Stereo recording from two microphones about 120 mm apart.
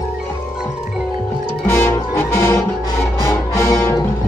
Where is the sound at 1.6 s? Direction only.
25° left (ahead or behind).